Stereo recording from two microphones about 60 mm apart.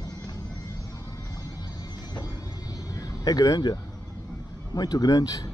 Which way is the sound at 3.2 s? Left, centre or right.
Left.